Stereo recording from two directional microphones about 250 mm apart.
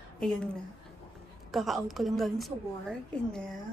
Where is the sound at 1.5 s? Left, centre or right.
Centre.